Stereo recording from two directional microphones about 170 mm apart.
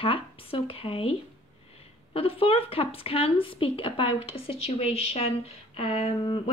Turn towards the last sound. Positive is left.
turn(degrees=30)  # may be behind; listen again after turning